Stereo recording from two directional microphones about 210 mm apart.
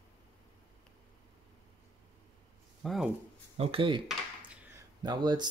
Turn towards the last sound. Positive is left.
turn(degrees=-20)  # may be behind; listen again after turning